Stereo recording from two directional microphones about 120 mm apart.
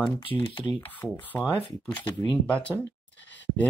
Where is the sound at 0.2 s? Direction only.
45° left (ahead or behind).